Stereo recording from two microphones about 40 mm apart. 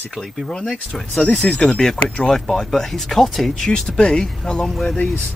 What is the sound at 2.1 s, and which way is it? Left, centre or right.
Speech, left.